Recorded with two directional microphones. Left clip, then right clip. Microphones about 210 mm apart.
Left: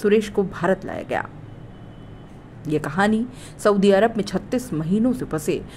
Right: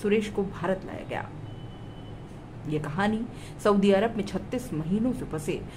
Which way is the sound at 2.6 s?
25° left (ahead or behind).